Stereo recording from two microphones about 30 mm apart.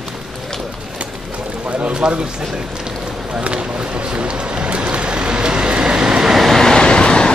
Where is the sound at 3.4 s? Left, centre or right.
Right.